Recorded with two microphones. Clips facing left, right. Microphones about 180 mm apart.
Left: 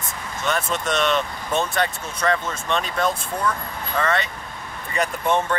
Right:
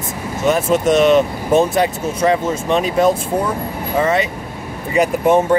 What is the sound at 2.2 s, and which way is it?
Speech, 15° right (ahead or behind).